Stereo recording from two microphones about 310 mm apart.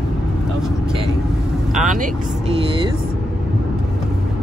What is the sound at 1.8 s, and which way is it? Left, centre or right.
Vehicle, right.